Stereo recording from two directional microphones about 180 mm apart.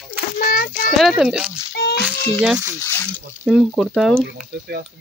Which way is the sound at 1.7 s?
65° left (ahead or behind).